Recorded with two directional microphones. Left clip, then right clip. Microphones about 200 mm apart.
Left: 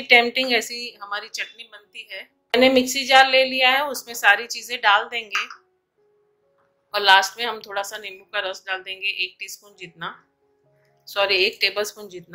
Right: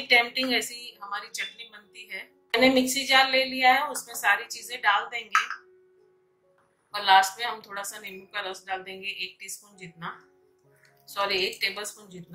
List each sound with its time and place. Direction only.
0.1 s a woman's voice: 40° left (ahead or behind)
2.6 s a woman's voice: 45° left (ahead or behind)
6.9 s a woman's voice: 45° left (ahead or behind)
11.1 s a woman's voice: 50° left (ahead or behind)